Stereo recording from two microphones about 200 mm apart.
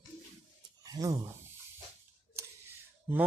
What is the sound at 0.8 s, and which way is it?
Speech, 20° right (ahead or behind).